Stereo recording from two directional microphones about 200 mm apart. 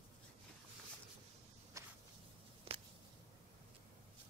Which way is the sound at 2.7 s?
30° right (ahead or behind).